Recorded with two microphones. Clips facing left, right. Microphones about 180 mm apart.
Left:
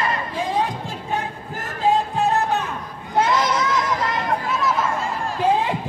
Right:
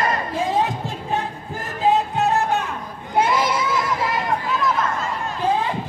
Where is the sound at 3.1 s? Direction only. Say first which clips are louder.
Even; 10° right (ahead or behind).